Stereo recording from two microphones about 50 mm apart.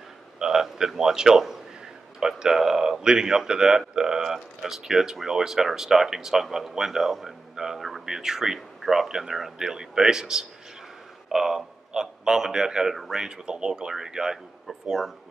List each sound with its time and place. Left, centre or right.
0.4 s a man's voice: centre